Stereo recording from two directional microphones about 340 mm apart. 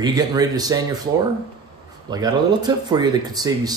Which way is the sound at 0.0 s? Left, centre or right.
Centre.